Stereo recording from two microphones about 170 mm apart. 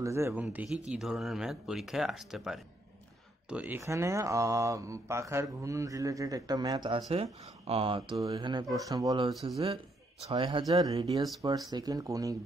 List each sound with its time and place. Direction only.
0.0 s speech: 15° right (ahead or behind)